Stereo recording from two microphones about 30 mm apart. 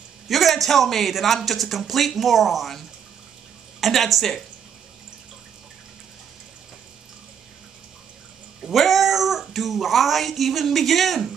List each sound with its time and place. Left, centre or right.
0.3 s a man's voice: centre
3.8 s speech: centre
8.6 s speech: centre